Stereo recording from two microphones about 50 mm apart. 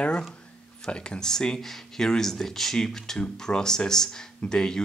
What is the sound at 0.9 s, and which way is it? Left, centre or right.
Speech, left.